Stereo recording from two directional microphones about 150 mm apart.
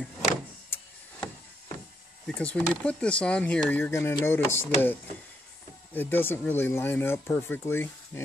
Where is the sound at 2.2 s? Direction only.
10° left (ahead or behind).